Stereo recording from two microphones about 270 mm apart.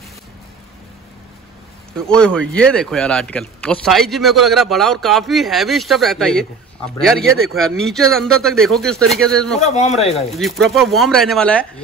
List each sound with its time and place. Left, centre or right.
2.0 s speech: centre
9.6 s speech: left
10.3 s speech: centre